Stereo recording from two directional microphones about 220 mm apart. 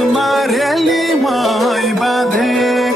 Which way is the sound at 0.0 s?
Centre (ahead or behind).